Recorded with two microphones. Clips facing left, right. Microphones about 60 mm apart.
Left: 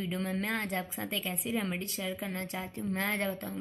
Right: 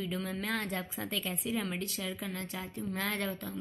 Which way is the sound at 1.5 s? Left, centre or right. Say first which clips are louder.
Left 2 dB; left.